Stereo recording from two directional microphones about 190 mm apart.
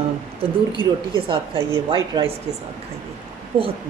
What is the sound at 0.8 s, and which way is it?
A woman's voice, 25° right (ahead or behind).